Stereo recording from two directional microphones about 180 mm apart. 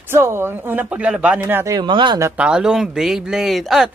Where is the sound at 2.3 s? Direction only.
5° right (ahead or behind).